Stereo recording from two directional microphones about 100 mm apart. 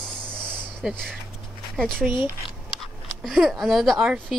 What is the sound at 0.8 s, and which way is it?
Speech, 5° right (ahead or behind).